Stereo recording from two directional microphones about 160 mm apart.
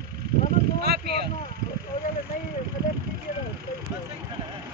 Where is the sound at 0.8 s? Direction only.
80° right.